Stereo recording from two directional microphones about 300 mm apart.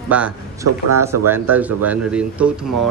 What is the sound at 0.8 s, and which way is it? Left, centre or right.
Speech, right.